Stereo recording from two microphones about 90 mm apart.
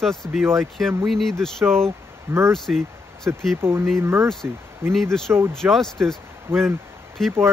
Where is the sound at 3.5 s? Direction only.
30° right (ahead or behind).